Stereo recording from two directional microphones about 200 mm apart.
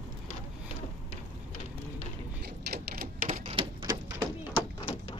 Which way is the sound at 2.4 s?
50° right (ahead or behind).